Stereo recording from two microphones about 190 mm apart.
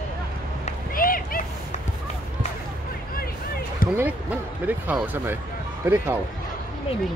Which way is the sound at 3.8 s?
50° left (ahead or behind).